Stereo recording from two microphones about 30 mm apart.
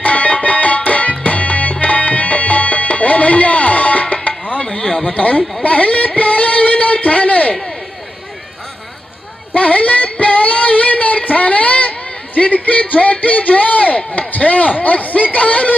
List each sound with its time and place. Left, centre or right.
0.0 s music: left
4.6 s a sound: left
5.1 s speech: left
5.6 s a sound: left
9.5 s child singing: left
12.6 s chop: left